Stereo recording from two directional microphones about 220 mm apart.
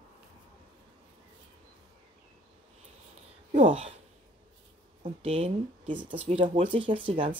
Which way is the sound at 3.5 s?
25° right (ahead or behind).